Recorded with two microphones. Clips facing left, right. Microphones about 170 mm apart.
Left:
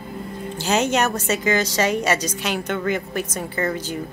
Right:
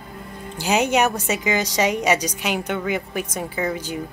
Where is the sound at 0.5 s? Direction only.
10° right (ahead or behind).